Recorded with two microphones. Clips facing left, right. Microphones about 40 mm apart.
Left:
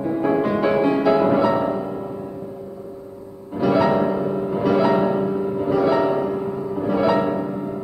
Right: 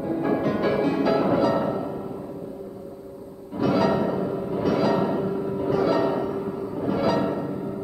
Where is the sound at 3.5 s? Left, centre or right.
Centre.